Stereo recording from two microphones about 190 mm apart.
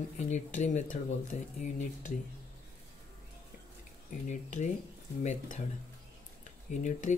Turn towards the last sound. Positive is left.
turn(degrees=40)  # may be behind; listen again after turning